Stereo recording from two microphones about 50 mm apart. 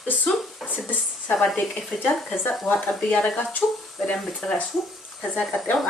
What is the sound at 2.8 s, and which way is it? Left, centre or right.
Speech, left.